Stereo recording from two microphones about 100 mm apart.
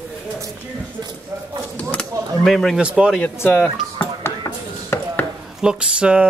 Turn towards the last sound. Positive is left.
turn(degrees=-10)  # may be behind; listen again after turning